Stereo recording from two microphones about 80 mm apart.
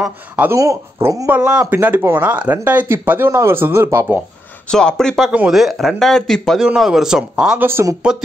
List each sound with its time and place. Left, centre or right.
0.6 s speech: right
1.3 s speech: centre
4.6 s speech: centre
6.6 s a man's voice: centre
7.5 s speech: right
8.1 s a man's voice: centre